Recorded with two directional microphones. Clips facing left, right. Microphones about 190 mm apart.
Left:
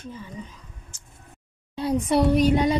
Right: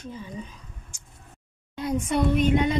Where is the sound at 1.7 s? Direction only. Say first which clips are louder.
Left 4 dB; 35° left (ahead or behind).